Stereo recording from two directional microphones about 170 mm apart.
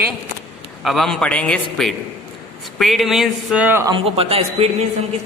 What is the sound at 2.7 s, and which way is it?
Speech, centre (ahead or behind).